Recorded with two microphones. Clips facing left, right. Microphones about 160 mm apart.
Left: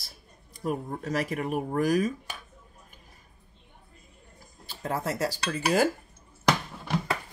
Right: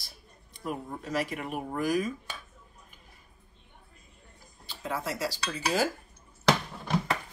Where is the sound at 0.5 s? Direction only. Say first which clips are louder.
Left 5 dB; 45° left (ahead or behind).